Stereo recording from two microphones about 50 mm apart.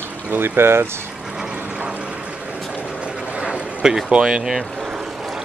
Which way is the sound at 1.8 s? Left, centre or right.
Right.